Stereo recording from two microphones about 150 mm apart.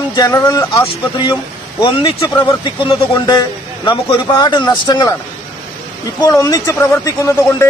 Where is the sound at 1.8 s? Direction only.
35° left (ahead or behind).